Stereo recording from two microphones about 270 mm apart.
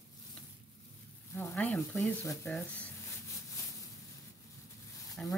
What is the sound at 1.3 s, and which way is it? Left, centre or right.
Speech, centre.